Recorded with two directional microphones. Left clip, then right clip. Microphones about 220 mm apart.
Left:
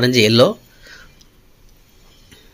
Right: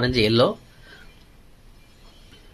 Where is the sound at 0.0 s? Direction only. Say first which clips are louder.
Left 6 dB; 30° left (ahead or behind).